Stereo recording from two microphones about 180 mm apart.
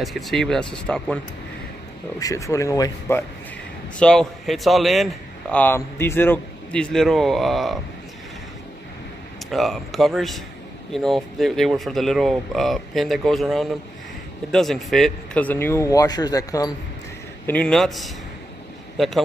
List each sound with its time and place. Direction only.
0.0 s a man's voice: centre (ahead or behind)
2.1 s speech: 20° left (ahead or behind)
4.0 s a man's voice: 5° left (ahead or behind)
9.5 s a man's voice: centre (ahead or behind); by 16.7 s 20° left (ahead or behind)
17.5 s a man's voice: 5° left (ahead or behind)